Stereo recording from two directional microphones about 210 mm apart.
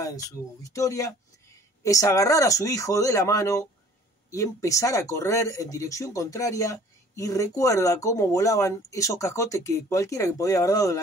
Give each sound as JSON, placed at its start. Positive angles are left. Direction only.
{"t": 0.7, "sound": "speech", "side_deg": 15}